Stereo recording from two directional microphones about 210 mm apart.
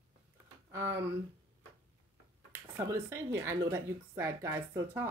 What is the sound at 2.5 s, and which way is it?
Speech, 10° right (ahead or behind).